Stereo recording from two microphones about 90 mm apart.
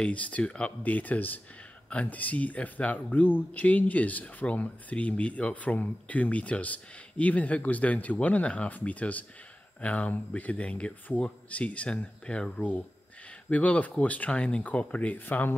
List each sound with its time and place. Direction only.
0.0 s speech: 15° left (ahead or behind)